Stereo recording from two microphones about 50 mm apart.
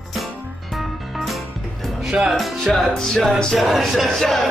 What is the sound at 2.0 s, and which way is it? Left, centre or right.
Music, centre.